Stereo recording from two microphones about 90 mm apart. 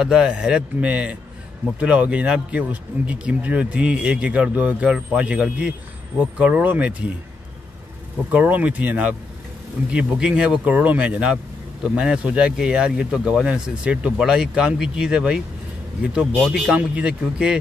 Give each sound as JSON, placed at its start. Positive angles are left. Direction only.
{"t": 0.0, "sound": "speech", "side_deg": -10}
{"t": 8.3, "sound": "speech", "side_deg": -20}